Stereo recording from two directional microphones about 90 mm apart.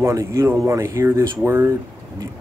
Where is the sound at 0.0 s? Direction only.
35° right (ahead or behind).